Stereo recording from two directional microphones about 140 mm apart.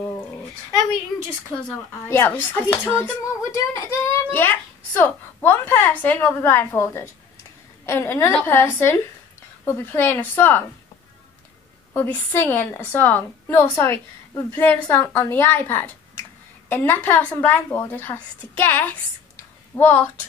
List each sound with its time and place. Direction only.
0.0 s a sound: 15° left (ahead or behind)
1.5 s speech: 5° left (ahead or behind)
2.0 s a woman's voice: 20° left (ahead or behind)
11.9 s speech: 15° left (ahead or behind)